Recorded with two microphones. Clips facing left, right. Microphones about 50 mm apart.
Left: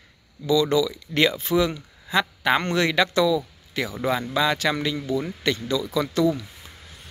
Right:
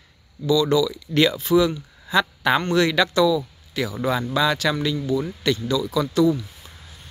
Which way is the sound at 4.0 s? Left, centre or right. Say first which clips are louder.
Right 1 dB; centre.